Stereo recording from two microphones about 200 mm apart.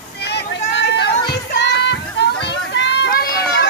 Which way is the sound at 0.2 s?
55° left (ahead or behind).